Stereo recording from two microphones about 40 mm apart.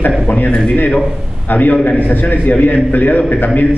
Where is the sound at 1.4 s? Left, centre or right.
Left.